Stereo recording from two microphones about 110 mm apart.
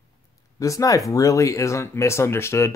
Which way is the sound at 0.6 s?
30° left (ahead or behind).